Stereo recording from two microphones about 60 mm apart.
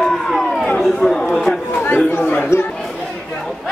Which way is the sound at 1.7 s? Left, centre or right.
Left.